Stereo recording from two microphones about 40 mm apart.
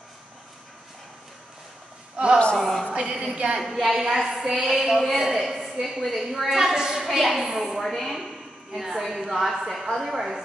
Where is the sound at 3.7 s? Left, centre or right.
Centre.